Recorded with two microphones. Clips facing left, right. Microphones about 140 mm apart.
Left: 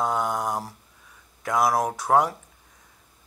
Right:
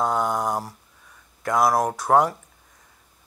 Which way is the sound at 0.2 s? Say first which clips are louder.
Right 2 dB; 5° right (ahead or behind).